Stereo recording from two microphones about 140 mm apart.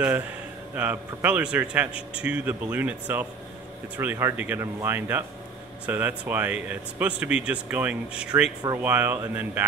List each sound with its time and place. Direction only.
0.7 s speech: 10° right (ahead or behind)